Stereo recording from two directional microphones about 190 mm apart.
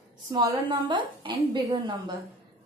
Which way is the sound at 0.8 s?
25° right (ahead or behind).